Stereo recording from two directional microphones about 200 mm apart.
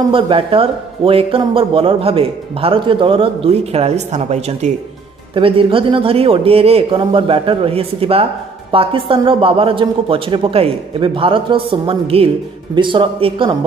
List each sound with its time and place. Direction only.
0.1 s a man's voice: 25° right (ahead or behind)